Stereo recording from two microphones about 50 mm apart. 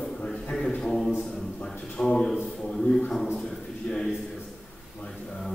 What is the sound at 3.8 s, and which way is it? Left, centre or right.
Speech, left.